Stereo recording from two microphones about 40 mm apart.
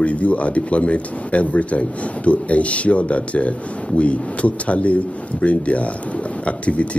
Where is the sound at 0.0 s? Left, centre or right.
Left.